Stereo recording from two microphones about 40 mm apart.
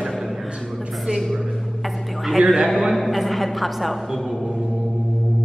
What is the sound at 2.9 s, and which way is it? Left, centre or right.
A woman's voice, centre.